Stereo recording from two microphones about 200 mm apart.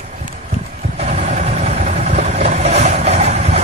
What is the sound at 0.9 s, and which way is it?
Vehicle, 35° right (ahead or behind).